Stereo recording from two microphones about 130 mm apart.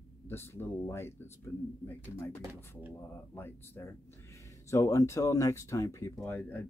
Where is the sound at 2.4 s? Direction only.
20° right (ahead or behind).